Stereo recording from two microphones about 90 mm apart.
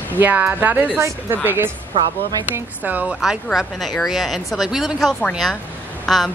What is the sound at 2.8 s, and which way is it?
Speech, 20° right (ahead or behind).